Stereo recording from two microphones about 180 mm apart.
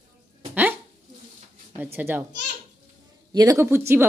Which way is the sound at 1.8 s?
10° right (ahead or behind).